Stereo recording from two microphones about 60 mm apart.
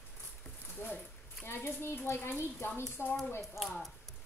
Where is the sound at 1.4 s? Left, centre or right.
Left.